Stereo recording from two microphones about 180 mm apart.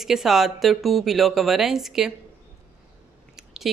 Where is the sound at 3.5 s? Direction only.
Centre (ahead or behind).